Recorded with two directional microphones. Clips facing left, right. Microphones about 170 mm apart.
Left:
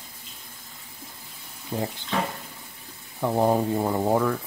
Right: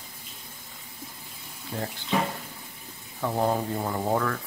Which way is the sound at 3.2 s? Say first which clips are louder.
Left 4 dB; 15° left (ahead or behind).